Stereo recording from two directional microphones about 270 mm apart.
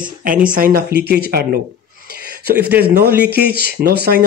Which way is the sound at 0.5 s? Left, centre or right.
Right.